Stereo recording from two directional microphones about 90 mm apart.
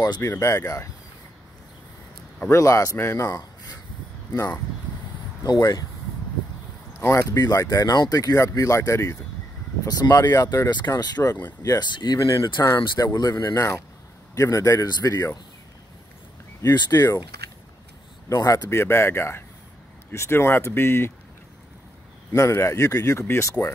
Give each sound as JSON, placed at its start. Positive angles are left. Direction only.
{"t": 0.2, "sound": "speech", "side_deg": 30}
{"t": 2.5, "sound": "speech", "side_deg": 35}
{"t": 5.4, "sound": "speech", "side_deg": 45}
{"t": 7.0, "sound": "speech", "side_deg": 30}
{"t": 7.3, "sound": "speech", "side_deg": 40}
{"t": 9.8, "sound": "a man's voice", "side_deg": 45}
{"t": 11.9, "sound": "a man's voice", "side_deg": 55}
{"t": 16.6, "sound": "a man's voice", "side_deg": 50}
{"t": 18.3, "sound": "speech", "side_deg": 40}
{"t": 18.8, "sound": "speech", "side_deg": 25}
{"t": 22.3, "sound": "speech", "side_deg": 30}